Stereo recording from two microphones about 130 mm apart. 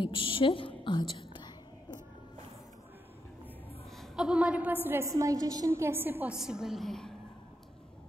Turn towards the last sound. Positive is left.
turn(degrees=5)  # may be behind; listen again after turning